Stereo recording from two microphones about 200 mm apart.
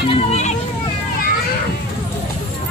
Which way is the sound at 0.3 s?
35° left (ahead or behind).